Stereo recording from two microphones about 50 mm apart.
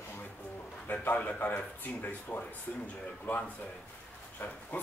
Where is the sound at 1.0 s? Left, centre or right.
Left.